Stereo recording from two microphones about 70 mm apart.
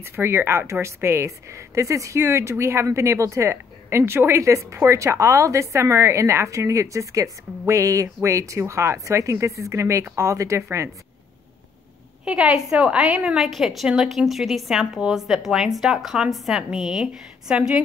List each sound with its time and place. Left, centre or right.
0.0 s speech: right
12.3 s a woman's voice: centre
13.4 s a woman's voice: centre